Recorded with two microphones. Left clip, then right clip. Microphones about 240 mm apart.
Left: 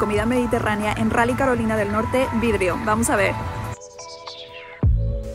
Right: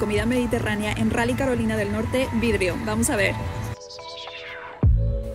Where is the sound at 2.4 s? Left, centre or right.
Centre.